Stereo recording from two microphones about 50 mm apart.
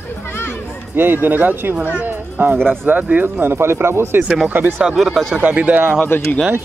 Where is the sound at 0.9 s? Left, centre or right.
Right.